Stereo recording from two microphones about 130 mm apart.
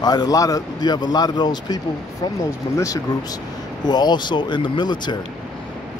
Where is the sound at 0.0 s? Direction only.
30° left (ahead or behind).